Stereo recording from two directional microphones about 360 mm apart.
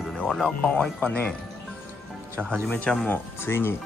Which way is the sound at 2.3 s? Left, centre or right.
Centre.